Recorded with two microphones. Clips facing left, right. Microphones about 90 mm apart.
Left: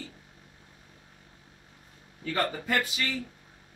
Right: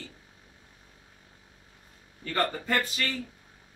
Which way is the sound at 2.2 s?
10° left (ahead or behind).